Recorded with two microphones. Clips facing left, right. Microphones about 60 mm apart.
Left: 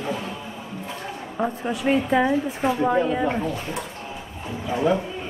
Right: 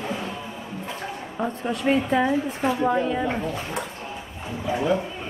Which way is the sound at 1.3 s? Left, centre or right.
Centre.